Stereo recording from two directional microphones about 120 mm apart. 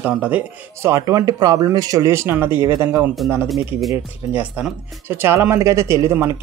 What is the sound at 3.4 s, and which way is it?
Speech, centre (ahead or behind).